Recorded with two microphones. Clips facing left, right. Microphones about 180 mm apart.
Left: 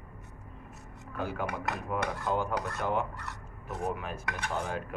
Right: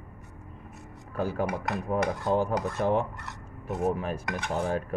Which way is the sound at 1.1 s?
35° right (ahead or behind).